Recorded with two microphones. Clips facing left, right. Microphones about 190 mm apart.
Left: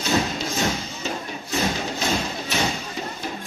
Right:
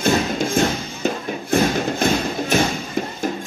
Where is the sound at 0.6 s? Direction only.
50° right (ahead or behind).